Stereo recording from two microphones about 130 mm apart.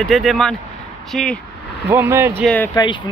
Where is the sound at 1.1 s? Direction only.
5° left (ahead or behind).